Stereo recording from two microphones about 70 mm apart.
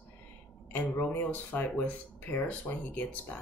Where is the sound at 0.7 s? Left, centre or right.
Left.